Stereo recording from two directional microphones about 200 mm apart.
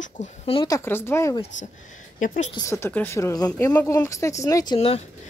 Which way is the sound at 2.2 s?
40° left (ahead or behind).